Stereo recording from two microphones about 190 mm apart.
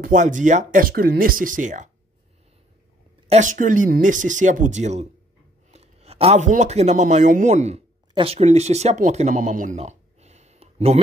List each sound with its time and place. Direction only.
0.0 s speech: 40° right (ahead or behind)
3.3 s speech: 40° right (ahead or behind)